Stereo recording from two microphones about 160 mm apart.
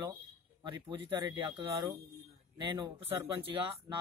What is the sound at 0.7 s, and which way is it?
Speech, 30° right (ahead or behind).